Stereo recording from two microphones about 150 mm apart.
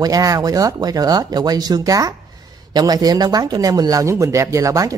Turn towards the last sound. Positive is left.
turn(degrees=-20)  # may be behind; listen again after turning